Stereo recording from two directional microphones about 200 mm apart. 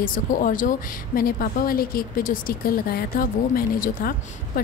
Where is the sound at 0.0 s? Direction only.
40° left (ahead or behind).